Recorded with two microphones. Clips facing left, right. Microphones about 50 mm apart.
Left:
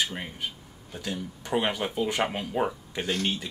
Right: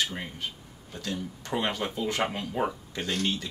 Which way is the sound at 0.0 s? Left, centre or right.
Centre.